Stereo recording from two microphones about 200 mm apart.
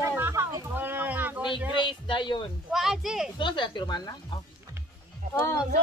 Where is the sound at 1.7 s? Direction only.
25° left (ahead or behind).